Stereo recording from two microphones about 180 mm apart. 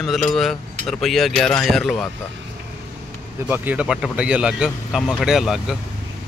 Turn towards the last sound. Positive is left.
turn(degrees=0)  # may be behind; listen again after turning